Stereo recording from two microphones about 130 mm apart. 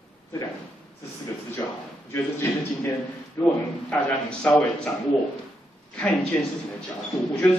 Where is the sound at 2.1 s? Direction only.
20° left (ahead or behind).